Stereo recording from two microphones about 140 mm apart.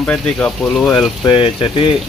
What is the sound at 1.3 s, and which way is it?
Speech, 35° left (ahead or behind).